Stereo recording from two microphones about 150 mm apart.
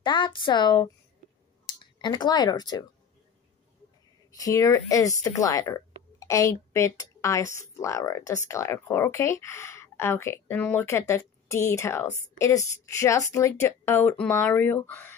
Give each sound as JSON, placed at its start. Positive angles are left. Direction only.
{"t": 0.0, "sound": "a woman's voice", "side_deg": 30}
{"t": 2.0, "sound": "speech", "side_deg": 30}
{"t": 4.4, "sound": "speech", "side_deg": 20}